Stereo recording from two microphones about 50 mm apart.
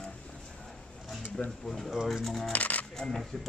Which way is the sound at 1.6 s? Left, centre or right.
Centre.